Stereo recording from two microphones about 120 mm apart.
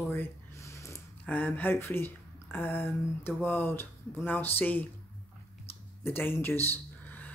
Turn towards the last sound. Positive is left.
turn(degrees=15)  # may be behind; listen again after turning